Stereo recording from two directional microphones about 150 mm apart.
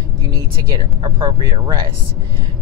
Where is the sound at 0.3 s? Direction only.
25° right (ahead or behind).